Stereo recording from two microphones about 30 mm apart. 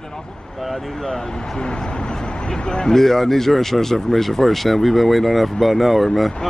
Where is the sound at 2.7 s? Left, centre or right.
Left.